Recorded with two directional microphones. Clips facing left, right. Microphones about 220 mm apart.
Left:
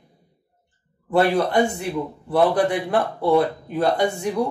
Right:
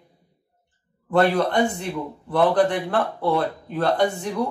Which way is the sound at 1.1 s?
10° left (ahead or behind).